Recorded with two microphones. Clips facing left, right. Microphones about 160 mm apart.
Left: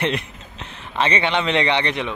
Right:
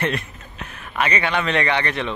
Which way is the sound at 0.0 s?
20° left (ahead or behind).